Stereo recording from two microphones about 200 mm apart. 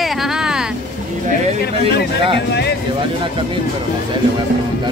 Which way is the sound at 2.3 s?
55° left (ahead or behind).